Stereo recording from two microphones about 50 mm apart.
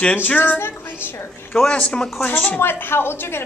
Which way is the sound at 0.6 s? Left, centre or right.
Left.